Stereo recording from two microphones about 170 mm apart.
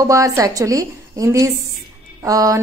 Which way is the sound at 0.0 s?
20° right (ahead or behind).